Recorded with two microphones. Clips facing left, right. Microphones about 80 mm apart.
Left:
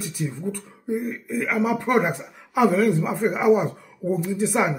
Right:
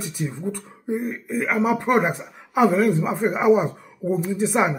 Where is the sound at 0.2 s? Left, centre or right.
Right.